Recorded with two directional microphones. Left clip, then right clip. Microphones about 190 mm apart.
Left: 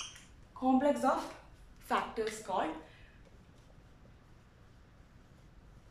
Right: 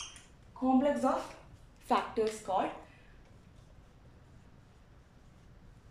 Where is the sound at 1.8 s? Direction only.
15° right (ahead or behind).